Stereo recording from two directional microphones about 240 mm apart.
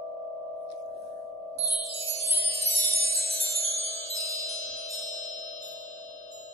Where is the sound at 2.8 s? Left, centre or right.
Left.